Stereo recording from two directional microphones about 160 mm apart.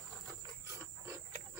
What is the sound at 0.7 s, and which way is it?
Wild animals, 20° right (ahead or behind).